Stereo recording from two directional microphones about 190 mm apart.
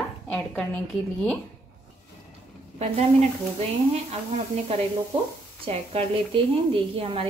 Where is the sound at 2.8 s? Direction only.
35° right (ahead or behind).